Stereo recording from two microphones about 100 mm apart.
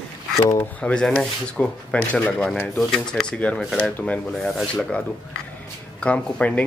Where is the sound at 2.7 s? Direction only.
5° left (ahead or behind).